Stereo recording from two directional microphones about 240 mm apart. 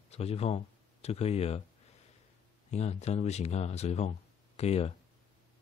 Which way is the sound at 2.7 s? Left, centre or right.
Left.